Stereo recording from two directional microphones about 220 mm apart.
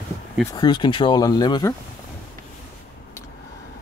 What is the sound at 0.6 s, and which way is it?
Speech, 20° left (ahead or behind).